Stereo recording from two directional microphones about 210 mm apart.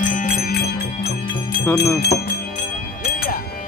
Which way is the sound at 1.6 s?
10° left (ahead or behind).